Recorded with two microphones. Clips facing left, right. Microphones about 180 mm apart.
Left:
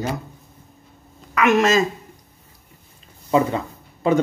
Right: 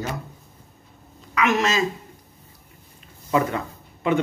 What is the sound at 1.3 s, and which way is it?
Speech, 50° left (ahead or behind).